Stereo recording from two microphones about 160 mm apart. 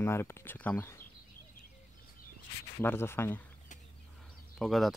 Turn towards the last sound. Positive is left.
turn(degrees=0)  # may be behind; listen again after turning